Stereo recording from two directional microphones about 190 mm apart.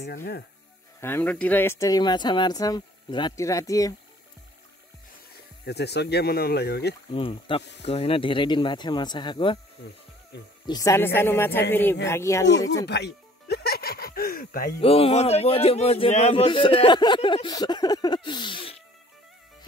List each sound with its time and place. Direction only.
0.0 s speech: 55° left (ahead or behind)
1.0 s speech: 10° left (ahead or behind)
5.7 s speech: 60° left (ahead or behind)
7.1 s speech: 30° left (ahead or behind)
10.7 s speech: 15° left (ahead or behind)
12.4 s speech: 65° left (ahead or behind)
12.8 s music: 60° left (ahead or behind)
14.8 s speech: 30° left (ahead or behind)